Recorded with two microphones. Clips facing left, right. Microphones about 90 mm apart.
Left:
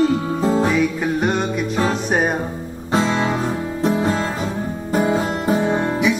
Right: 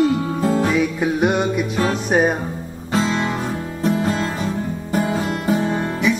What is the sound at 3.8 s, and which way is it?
Music, 30° left (ahead or behind).